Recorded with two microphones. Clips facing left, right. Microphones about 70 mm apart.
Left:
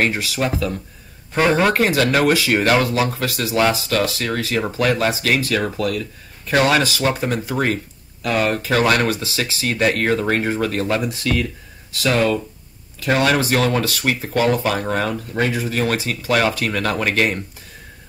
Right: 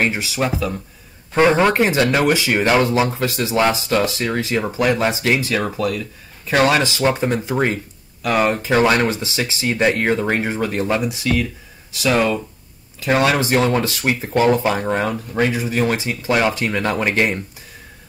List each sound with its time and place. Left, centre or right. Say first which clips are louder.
0.0 s speech: even; right